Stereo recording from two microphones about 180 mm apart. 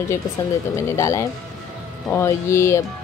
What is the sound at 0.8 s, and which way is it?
A woman's voice, 15° left (ahead or behind).